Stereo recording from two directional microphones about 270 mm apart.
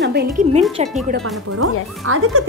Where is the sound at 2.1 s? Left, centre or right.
Right.